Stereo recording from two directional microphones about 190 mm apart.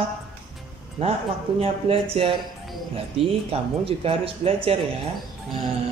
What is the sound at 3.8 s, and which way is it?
Speech, 30° right (ahead or behind).